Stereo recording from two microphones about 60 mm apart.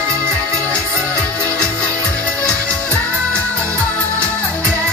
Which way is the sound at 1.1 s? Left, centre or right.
Centre.